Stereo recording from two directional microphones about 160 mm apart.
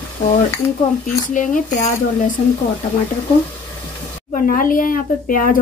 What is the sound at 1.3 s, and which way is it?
Speech, 55° left (ahead or behind).